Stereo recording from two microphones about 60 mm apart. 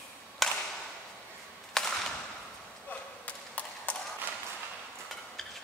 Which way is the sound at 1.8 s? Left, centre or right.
Centre.